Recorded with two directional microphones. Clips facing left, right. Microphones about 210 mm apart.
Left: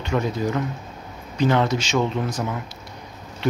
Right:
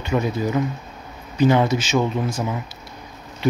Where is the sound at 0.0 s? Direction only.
5° right (ahead or behind).